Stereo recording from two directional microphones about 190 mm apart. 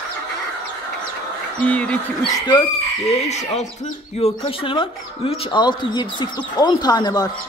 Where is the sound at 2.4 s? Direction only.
25° left (ahead or behind).